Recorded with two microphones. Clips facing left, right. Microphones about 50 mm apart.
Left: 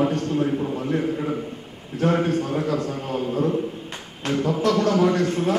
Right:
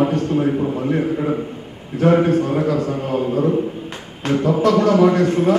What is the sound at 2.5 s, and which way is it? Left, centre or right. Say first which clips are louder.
A man's voice: right 5 dB; right.